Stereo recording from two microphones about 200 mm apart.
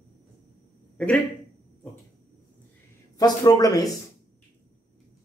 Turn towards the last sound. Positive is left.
turn(degrees=20)  # may be behind; listen again after turning